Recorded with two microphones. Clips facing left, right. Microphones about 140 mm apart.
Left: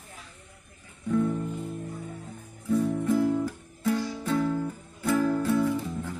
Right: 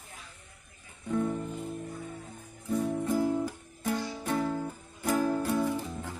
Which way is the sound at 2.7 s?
15° right (ahead or behind).